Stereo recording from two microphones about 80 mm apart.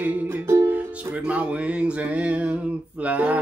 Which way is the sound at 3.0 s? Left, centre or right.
Centre.